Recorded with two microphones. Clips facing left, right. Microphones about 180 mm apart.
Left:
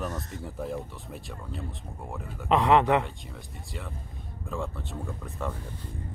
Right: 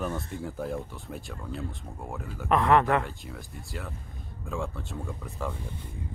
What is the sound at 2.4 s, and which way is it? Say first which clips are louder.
Speech: left 1 dB; 15° left (ahead or behind).